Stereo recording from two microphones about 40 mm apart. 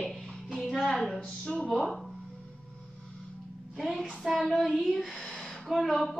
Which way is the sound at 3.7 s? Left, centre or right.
Centre.